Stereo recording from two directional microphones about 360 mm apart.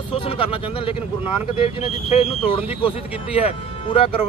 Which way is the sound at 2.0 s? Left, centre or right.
Centre.